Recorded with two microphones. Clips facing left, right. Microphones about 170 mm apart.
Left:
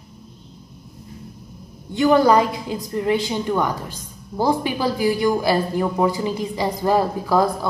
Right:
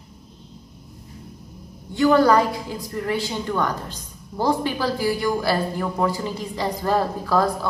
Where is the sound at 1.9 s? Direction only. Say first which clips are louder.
Left 1 dB; 15° left (ahead or behind).